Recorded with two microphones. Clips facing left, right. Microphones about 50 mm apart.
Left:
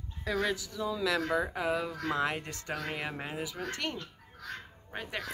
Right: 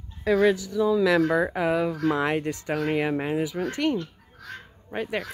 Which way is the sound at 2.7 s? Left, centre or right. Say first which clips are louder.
Right 11 dB; right.